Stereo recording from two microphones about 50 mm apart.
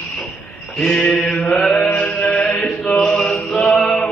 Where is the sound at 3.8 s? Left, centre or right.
Centre.